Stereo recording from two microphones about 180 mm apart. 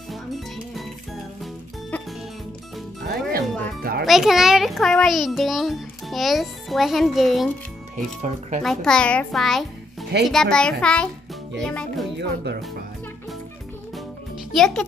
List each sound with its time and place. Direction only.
0.1 s music: centre (ahead or behind)
3.1 s music: 55° right (ahead or behind)
4.0 s a child's voice: centre (ahead or behind)
8.2 s speech: 40° right (ahead or behind)
8.6 s a child's voice: 5° left (ahead or behind)
12.2 s speech: 65° right (ahead or behind)
14.5 s a child's voice: 5° left (ahead or behind)